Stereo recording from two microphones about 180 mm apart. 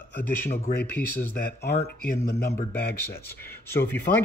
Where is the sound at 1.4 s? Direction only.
55° left (ahead or behind).